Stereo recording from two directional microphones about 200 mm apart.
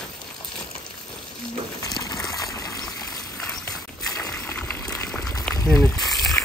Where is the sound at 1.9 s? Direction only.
15° left (ahead or behind).